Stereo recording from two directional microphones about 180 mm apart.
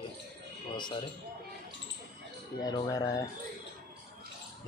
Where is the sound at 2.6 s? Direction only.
20° left (ahead or behind).